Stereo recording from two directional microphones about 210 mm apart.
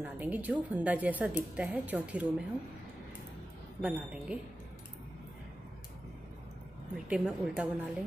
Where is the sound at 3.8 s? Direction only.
5° right (ahead or behind).